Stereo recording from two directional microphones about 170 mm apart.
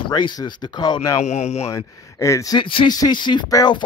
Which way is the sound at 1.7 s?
20° left (ahead or behind).